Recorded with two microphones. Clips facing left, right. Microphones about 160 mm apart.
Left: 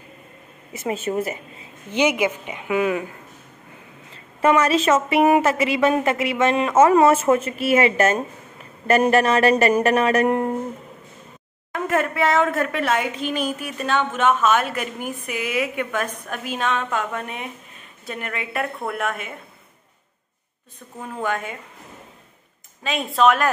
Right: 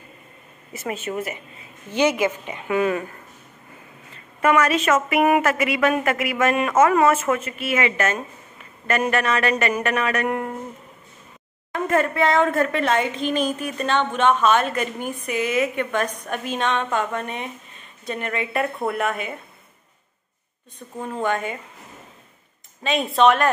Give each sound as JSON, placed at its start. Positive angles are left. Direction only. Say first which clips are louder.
{"t": 0.9, "sound": "speech", "louder": "left 5 dB", "side_deg": 35}
{"t": 1.9, "sound": "a woman's voice", "louder": "even", "side_deg": 15}
{"t": 4.1, "sound": "a woman's voice", "louder": "left 1 dB", "side_deg": 30}
{"t": 11.7, "sound": "a woman's voice", "louder": "right 1 dB", "side_deg": 5}
{"t": 21.0, "sound": "a woman's voice", "louder": "right 2 dB", "side_deg": 0}
{"t": 22.8, "sound": "a woman's voice", "louder": "right 1 dB", "side_deg": 0}